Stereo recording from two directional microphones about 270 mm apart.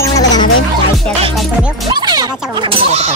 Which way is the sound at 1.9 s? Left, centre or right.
Centre.